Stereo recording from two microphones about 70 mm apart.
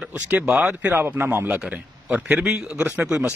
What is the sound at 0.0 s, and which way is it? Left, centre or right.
Speech, centre.